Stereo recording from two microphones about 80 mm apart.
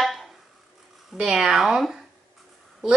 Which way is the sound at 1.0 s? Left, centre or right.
Centre.